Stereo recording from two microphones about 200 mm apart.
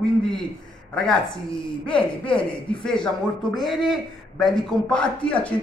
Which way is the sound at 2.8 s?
5° left (ahead or behind).